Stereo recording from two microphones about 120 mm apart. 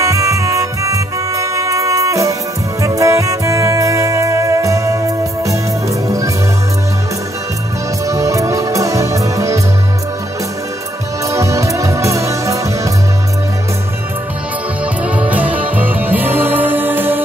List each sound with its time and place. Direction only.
0.0 s music: 25° right (ahead or behind)
8.1 s music: 25° right (ahead or behind)
11.2 s music: 25° right (ahead or behind)
15.0 s music: 10° right (ahead or behind)